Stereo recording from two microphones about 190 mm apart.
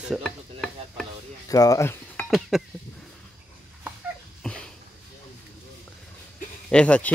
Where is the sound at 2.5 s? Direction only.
Centre (ahead or behind).